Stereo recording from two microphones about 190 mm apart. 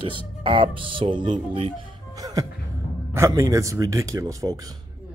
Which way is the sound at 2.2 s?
20° right (ahead or behind).